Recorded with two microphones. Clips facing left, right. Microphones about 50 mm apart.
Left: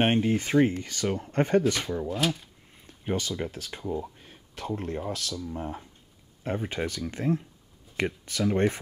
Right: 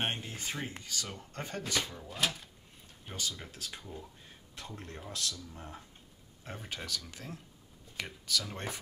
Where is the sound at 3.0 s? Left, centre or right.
Left.